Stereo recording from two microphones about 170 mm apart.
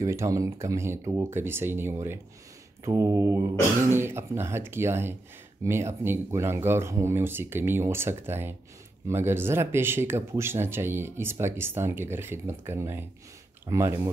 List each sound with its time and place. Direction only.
0.0 s speech: 15° right (ahead or behind)